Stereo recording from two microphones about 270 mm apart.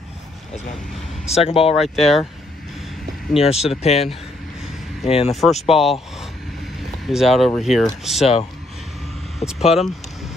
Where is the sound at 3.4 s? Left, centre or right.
Left.